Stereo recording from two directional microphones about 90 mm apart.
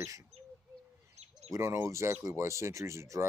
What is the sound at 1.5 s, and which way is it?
Speech, 30° right (ahead or behind).